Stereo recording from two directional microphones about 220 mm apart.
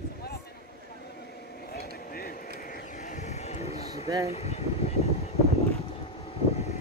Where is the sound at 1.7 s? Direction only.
45° left (ahead or behind).